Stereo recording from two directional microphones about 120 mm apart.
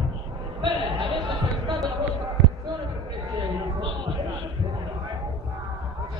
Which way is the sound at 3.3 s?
40° right (ahead or behind).